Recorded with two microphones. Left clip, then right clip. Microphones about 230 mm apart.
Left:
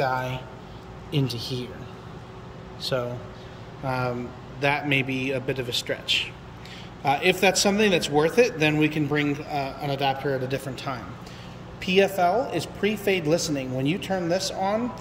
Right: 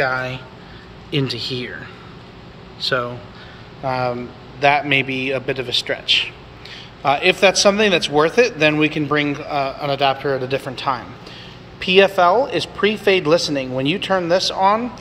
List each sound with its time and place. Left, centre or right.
0.0 s speech: centre
3.8 s speech: centre